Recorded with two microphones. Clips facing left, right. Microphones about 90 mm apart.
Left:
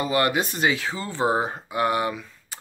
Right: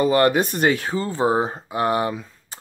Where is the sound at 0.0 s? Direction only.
40° right (ahead or behind).